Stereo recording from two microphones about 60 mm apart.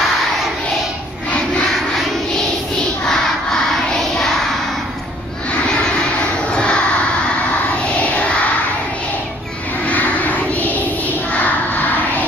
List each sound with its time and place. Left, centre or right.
6.1 s vehicle: centre
10.5 s child singing: left